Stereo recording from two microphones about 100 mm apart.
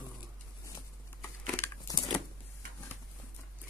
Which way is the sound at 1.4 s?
20° left (ahead or behind).